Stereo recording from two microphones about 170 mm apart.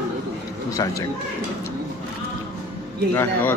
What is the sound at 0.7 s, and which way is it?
Speech, 20° left (ahead or behind).